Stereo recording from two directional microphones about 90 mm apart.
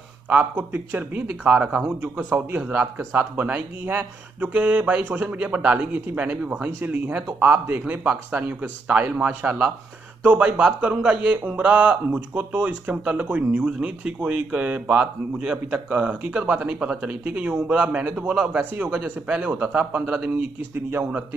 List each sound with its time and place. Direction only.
0.3 s speech: 20° right (ahead or behind)